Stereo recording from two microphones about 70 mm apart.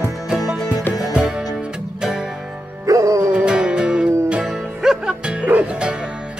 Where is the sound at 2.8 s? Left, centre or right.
Right.